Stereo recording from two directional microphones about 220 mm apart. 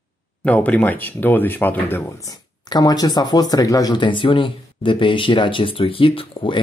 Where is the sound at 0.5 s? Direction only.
5° left (ahead or behind).